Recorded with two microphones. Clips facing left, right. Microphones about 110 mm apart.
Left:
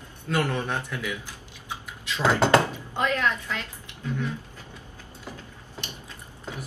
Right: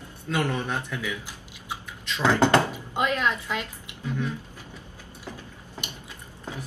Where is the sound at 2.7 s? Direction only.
15° right (ahead or behind).